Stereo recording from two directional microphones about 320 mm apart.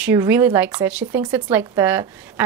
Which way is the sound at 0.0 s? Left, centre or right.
Centre.